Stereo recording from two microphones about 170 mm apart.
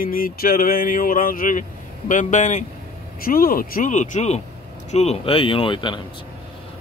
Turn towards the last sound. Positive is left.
turn(degrees=30)  # may be behind; listen again after turning